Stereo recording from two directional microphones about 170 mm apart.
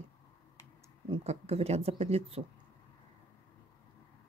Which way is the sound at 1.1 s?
40° right (ahead or behind).